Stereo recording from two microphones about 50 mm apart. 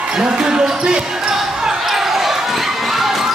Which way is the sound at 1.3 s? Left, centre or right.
Centre.